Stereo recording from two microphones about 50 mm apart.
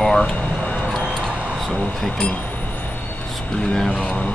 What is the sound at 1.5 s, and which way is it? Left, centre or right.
Speech, centre.